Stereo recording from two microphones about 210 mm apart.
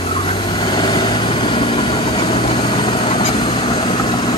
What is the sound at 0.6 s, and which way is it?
Vehicle, 20° left (ahead or behind).